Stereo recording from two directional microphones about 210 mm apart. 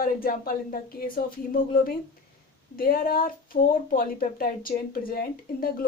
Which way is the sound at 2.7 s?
45° left (ahead or behind).